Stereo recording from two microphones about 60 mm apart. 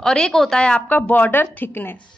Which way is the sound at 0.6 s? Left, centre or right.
Left.